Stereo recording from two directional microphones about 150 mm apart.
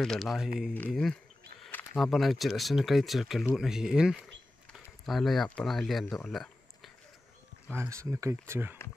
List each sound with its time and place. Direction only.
0.0 s speech: centre (ahead or behind)
7.6 s speech: 15° right (ahead or behind)